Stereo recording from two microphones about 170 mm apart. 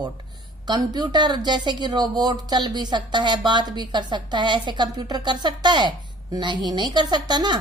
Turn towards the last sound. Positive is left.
turn(degrees=-25)  # may be behind; listen again after turning